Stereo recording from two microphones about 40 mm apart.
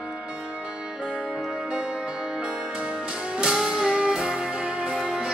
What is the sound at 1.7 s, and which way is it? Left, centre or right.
Music, right.